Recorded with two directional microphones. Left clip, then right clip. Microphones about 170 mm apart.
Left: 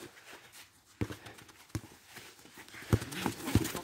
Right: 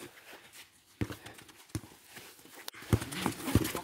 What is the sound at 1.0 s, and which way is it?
Clip-clop, 20° right (ahead or behind).